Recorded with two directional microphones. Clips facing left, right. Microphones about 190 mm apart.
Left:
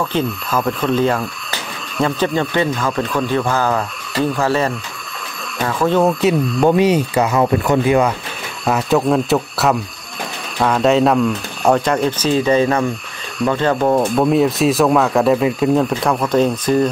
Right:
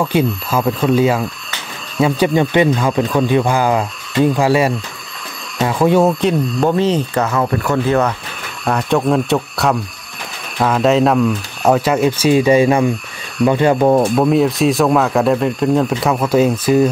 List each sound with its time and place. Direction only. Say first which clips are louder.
0.0 s speech: right 3 dB; 10° right (ahead or behind)
6.6 s speech: left 2 dB; 15° left (ahead or behind); by 14.1 s 15° right (ahead or behind)
14.1 s speech: right 1 dB; centre (ahead or behind)